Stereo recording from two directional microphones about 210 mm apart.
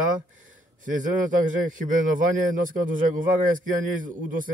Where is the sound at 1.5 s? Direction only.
40° right (ahead or behind).